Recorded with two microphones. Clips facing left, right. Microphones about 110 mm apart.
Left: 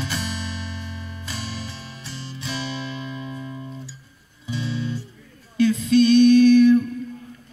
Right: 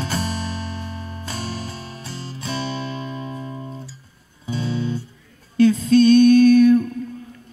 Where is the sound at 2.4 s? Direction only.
40° right (ahead or behind).